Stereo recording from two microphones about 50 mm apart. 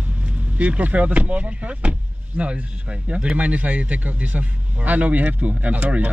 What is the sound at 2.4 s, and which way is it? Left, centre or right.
Speech, right.